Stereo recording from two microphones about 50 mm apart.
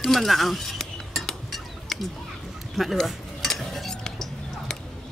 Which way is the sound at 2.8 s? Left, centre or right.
Centre.